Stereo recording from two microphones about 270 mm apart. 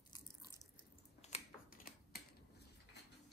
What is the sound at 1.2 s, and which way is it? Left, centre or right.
Typing, left.